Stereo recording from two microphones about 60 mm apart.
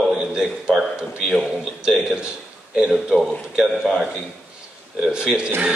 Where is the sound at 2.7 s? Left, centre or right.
Centre.